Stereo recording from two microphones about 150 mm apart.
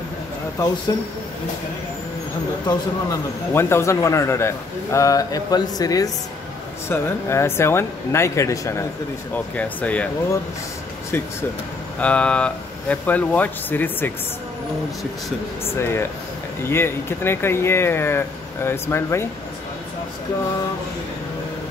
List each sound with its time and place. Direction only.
0.9 s a man's voice: 25° left (ahead or behind)
2.6 s a man's voice: 25° left (ahead or behind)
3.5 s a man's voice: 15° left (ahead or behind)
12.0 s speech: 10° left (ahead or behind)
15.8 s speech: 15° left (ahead or behind)